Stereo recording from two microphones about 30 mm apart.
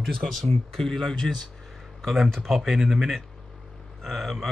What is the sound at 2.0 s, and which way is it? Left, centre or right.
Speech, centre.